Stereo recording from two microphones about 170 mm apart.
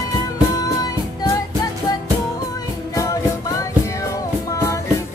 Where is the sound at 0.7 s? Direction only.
25° left (ahead or behind).